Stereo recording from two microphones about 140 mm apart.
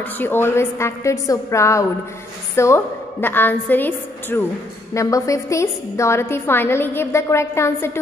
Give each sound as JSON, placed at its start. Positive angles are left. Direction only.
{"t": 0.0, "sound": "a woman's voice", "side_deg": 15}